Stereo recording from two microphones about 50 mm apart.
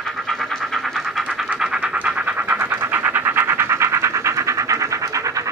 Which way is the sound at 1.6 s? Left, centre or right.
Centre.